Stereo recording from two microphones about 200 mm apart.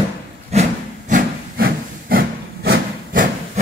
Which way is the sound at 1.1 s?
50° right (ahead or behind).